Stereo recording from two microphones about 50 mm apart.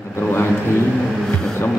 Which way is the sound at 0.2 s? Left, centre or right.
Left.